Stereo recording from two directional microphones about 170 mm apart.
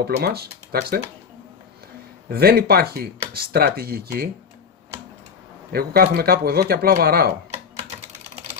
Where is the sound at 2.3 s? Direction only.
65° right (ahead or behind).